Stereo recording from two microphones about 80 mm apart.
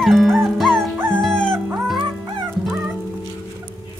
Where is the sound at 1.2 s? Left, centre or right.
Centre.